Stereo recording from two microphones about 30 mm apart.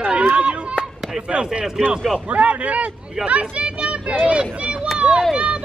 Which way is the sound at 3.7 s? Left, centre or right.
Right.